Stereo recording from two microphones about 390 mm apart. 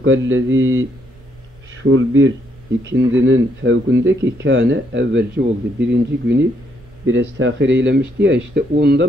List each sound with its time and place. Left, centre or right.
0.0 s speech: right